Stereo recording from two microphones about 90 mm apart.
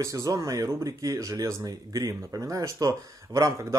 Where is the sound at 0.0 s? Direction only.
40° right (ahead or behind).